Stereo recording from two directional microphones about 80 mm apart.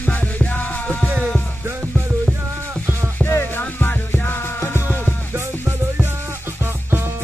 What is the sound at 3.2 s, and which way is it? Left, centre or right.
Music, left.